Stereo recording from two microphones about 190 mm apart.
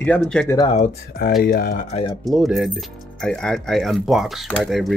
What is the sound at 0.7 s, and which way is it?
Speech, 40° left (ahead or behind).